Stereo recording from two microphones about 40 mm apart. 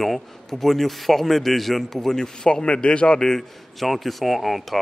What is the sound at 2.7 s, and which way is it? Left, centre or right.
Speech, left.